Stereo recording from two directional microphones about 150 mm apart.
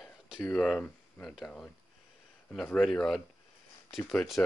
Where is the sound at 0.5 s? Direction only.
5° left (ahead or behind).